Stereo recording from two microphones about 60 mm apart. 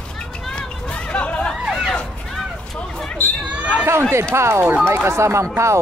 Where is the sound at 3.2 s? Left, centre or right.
Left.